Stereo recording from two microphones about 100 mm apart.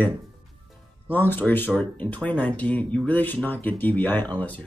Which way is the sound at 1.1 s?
20° left (ahead or behind).